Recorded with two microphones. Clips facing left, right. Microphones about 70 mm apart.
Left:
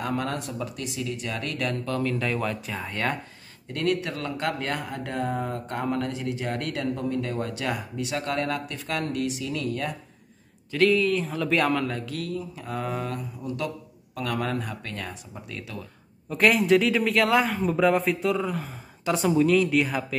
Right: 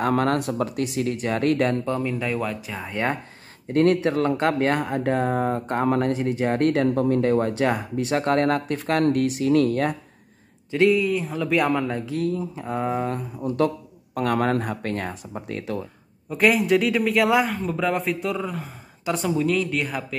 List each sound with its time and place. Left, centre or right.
0.1 s speech: right
1.9 s speech: centre
3.6 s speech: right
10.7 s speech: centre
11.0 s speech: centre
11.8 s speech: right
13.4 s speech: right
16.3 s speech: centre